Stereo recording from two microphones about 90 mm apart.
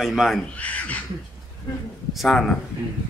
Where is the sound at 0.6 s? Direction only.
15° left (ahead or behind).